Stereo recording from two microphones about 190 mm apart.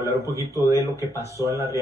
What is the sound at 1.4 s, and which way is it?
Speech, 15° right (ahead or behind).